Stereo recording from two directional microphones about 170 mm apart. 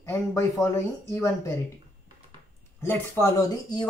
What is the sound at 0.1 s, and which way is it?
Speech, 15° left (ahead or behind).